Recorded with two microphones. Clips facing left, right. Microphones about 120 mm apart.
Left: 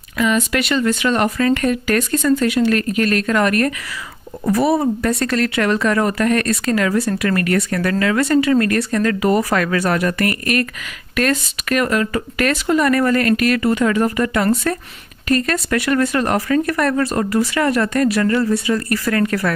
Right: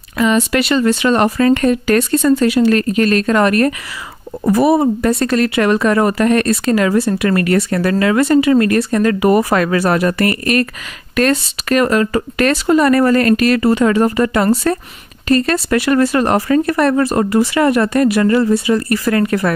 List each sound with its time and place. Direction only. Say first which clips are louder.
0.2 s speech: right 4 dB; 30° right (ahead or behind)